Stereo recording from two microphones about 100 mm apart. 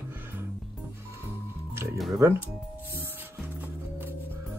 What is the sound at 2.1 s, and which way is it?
Speech, 25° right (ahead or behind).